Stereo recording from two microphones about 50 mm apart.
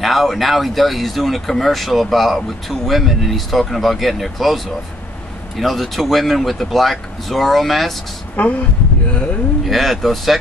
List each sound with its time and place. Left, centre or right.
0.0 s speech: centre
5.6 s speech: centre
8.4 s speech: left
9.7 s speech: centre